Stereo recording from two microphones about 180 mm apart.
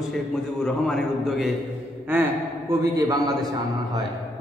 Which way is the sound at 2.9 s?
20° right (ahead or behind).